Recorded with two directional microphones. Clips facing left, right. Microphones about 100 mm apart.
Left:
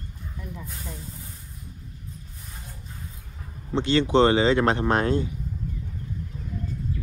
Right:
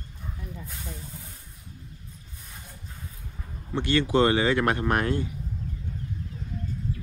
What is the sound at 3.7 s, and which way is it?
Speech, 20° left (ahead or behind).